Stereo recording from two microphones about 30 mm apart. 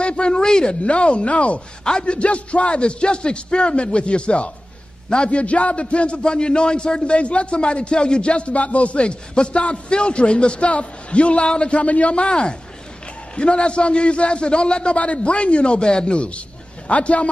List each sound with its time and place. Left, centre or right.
0.0 s a sound: left
0.3 s a man's voice: left
0.8 s speech: left
1.9 s a man's voice: left
11.8 s a man's voice: left